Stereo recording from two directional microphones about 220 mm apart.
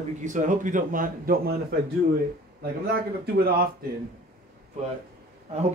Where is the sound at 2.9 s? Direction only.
45° right (ahead or behind).